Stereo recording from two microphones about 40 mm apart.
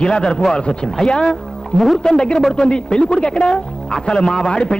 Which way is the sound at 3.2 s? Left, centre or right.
Left.